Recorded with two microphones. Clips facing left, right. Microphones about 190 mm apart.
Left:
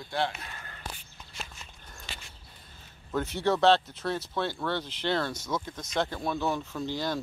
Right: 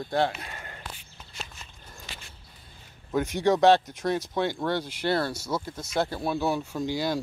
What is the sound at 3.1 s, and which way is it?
Speech, 15° right (ahead or behind).